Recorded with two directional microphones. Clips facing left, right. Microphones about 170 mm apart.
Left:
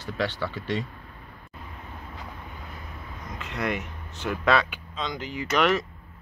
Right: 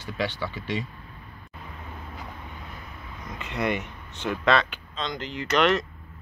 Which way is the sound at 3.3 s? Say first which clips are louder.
Right 2 dB; centre (ahead or behind).